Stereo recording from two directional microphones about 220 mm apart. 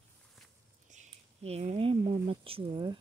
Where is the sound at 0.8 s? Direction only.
35° right (ahead or behind).